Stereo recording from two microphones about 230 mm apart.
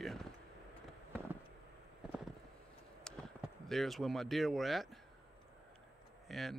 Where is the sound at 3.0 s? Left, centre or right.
Centre.